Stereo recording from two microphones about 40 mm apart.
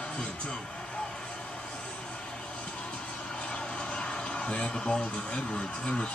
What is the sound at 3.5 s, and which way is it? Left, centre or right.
Speech, left.